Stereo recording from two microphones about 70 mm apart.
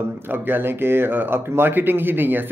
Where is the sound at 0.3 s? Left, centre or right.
Right.